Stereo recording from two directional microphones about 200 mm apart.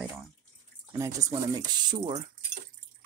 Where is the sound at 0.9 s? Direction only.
15° right (ahead or behind).